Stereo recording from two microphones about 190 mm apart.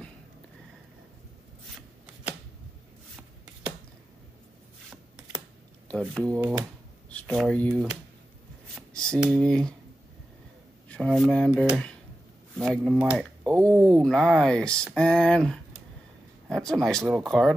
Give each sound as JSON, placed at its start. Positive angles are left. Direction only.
{"t": 1.8, "sound": "shuffling cards", "side_deg": -10}
{"t": 5.9, "sound": "speech", "side_deg": 5}
{"t": 6.3, "sound": "speech", "side_deg": -15}
{"t": 7.1, "sound": "speech", "side_deg": 5}
{"t": 8.7, "sound": "a sound", "side_deg": 5}
{"t": 9.3, "sound": "speech", "side_deg": 5}
{"t": 10.9, "sound": "speech", "side_deg": 0}
{"t": 13.2, "sound": "speech", "side_deg": 5}